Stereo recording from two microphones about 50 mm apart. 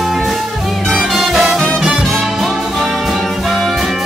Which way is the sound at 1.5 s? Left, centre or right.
Centre.